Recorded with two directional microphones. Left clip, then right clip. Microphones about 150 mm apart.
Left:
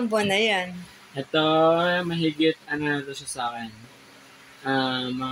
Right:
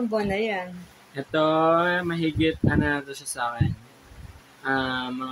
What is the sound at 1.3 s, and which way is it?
A man's voice, 25° left (ahead or behind).